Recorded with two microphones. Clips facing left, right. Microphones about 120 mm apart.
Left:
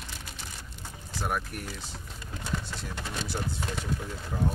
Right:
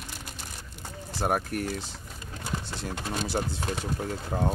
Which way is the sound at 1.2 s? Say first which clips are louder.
Right 6 dB; 50° right (ahead or behind).